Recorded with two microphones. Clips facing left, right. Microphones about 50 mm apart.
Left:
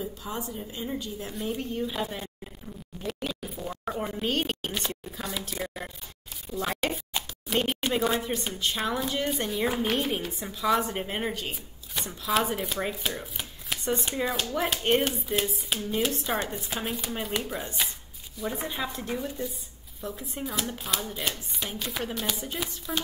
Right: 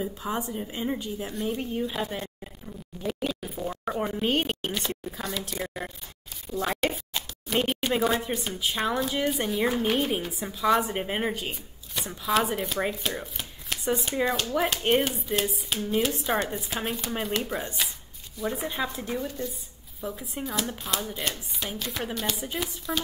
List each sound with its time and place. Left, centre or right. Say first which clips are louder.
0.0 s a woman's voice: right 4 dB; right
1.3 s speech: right 1 dB; centre
3.0 s a sound: right 3 dB; centre
5.3 s speech: even; centre
13.2 s chopping: even; centre
14.2 s speech: right 4 dB; centre
20.0 s speech: right 1 dB; centre